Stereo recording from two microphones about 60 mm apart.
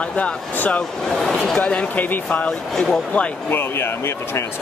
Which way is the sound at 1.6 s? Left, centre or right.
Centre.